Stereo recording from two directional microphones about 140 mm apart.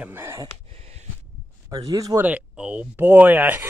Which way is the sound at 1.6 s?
25° right (ahead or behind).